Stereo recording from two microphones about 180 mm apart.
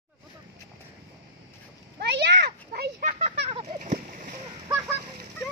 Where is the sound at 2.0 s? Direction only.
70° right (ahead or behind).